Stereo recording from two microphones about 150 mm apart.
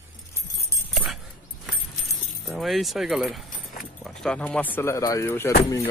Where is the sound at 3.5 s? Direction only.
70° left (ahead or behind).